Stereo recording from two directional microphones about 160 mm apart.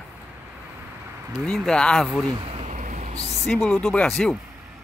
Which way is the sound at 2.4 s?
45° right (ahead or behind).